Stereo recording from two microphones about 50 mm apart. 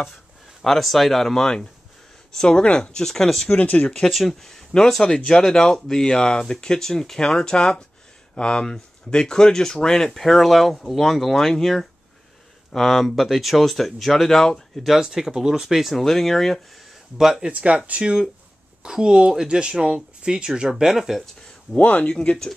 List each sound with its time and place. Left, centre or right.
0.7 s speech: centre
3.5 s speech: left
4.0 s speech: centre
17.2 s speech: centre
17.5 s speech: right; by 21.2 s centre
21.7 s speech: left